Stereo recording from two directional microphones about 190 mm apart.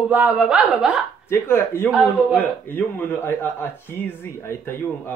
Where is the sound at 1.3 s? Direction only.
10° left (ahead or behind).